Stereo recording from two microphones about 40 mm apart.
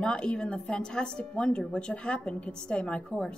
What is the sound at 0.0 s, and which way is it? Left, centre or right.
A woman's voice, left.